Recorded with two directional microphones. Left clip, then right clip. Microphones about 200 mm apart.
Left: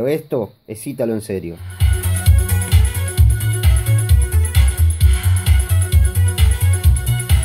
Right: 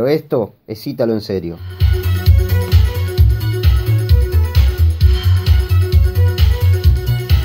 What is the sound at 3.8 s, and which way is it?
Music, 50° left (ahead or behind).